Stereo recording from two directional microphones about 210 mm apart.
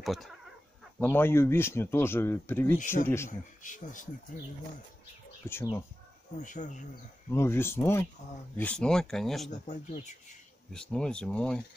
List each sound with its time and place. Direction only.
0.0 s speech: centre (ahead or behind)
3.3 s speech: 35° left (ahead or behind)
5.5 s speech: 10° left (ahead or behind)
6.4 s speech: 35° left (ahead or behind)
7.2 s speech: 10° left (ahead or behind)
9.7 s speech: 35° left (ahead or behind)
10.7 s speech: 5° left (ahead or behind)